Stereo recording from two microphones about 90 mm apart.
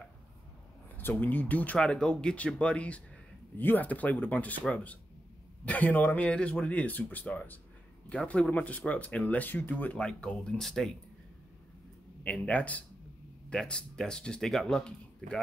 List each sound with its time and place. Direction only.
0.9 s speech: 20° left (ahead or behind); by 10.9 s 5° left (ahead or behind)
12.2 s speech: 15° left (ahead or behind)